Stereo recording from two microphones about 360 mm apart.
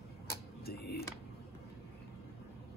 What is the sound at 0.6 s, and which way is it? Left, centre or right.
Speech, left.